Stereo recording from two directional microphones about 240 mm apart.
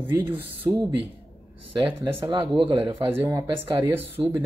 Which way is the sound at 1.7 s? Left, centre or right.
Right.